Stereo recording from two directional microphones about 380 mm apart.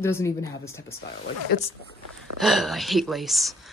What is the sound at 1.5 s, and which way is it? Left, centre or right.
Speech, left.